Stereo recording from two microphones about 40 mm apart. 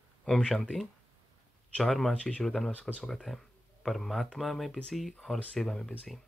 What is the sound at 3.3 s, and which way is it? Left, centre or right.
Speech, centre.